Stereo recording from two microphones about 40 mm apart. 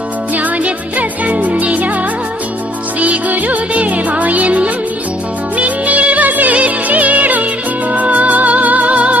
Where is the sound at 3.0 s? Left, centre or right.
Right.